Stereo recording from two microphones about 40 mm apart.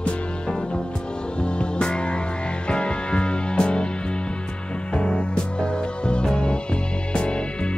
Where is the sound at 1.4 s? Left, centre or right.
Left.